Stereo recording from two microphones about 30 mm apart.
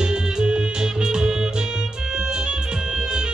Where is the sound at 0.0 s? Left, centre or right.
Right.